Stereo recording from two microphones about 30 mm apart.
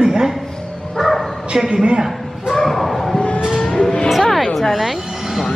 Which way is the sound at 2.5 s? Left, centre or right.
Centre.